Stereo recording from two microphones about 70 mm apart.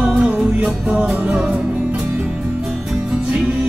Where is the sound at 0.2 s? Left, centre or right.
Centre.